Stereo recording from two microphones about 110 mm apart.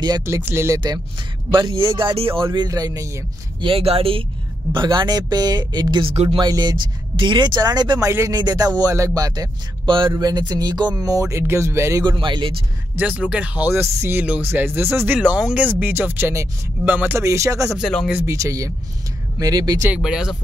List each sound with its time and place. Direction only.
0.5 s speech: 25° right (ahead or behind)
1.7 s speech: 45° right (ahead or behind)
2.5 s speech: 35° right (ahead or behind)
3.6 s speech: 60° right (ahead or behind)
4.7 s speech: 40° right (ahead or behind)
6.1 s speech: 55° right (ahead or behind)
6.4 s speech: 40° right (ahead or behind)
9.8 s speech: 45° right (ahead or behind)
10.1 s speech: 35° right (ahead or behind)
12.0 s speech: 45° right (ahead or behind)
12.9 s speech: 15° right (ahead or behind)
15.1 s speech: 10° right (ahead or behind)
17.2 s speech: 25° right (ahead or behind)
20.0 s speech: 5° right (ahead or behind)